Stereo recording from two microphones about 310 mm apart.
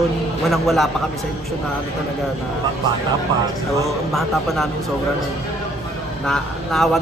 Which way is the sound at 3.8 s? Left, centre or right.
Centre.